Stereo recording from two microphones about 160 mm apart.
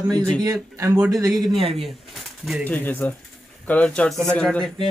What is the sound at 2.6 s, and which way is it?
Speech, 10° left (ahead or behind).